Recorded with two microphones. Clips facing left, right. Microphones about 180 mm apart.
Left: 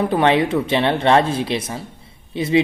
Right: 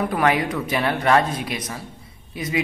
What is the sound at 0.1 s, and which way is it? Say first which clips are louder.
Speech: left 5 dB; 25° left (ahead or behind).